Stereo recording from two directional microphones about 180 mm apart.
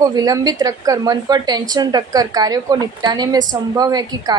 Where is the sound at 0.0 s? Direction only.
20° right (ahead or behind).